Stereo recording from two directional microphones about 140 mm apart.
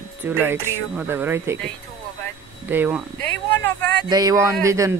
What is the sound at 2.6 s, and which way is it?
Speech, 15° right (ahead or behind).